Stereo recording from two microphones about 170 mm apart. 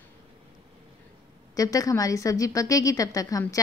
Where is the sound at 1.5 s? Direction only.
20° left (ahead or behind).